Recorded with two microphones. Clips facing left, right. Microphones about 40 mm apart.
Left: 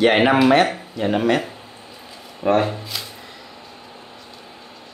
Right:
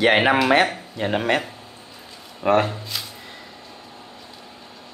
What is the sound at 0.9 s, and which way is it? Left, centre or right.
Speech, right.